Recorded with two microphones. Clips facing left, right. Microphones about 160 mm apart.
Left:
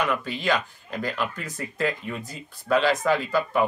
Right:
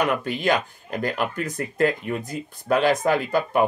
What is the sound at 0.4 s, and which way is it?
Speech, 50° right (ahead or behind).